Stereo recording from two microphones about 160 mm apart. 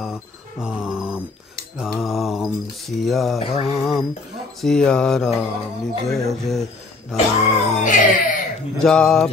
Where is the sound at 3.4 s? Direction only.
40° left (ahead or behind).